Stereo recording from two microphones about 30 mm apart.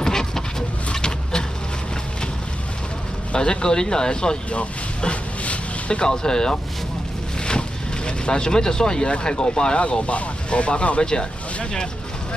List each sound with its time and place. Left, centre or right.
0.0 s a sound: left
3.3 s speech: left
4.5 s a sound: left
6.0 s speech: left
9.8 s speech: left
11.0 s speech: left